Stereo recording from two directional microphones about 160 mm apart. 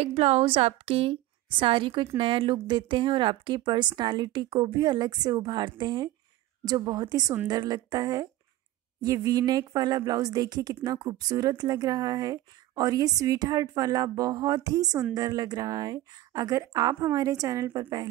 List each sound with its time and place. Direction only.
0.0 s a woman's voice: 40° right (ahead or behind); by 18.0 s 25° right (ahead or behind)